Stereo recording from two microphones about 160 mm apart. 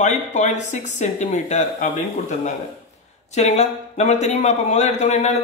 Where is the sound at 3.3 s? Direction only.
45° left (ahead or behind).